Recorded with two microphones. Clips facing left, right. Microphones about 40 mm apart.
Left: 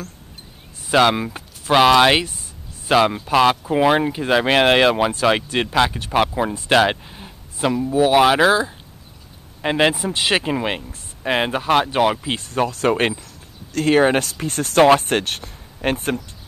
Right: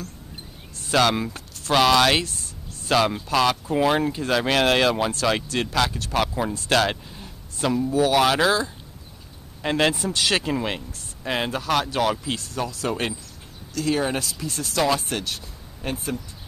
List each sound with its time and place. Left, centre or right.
0.8 s speech: centre; by 16.2 s left